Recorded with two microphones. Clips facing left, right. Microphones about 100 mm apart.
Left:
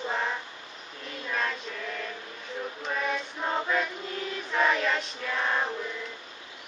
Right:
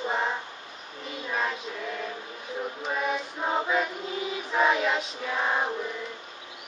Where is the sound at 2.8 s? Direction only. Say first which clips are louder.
Right 1 dB; 5° right (ahead or behind).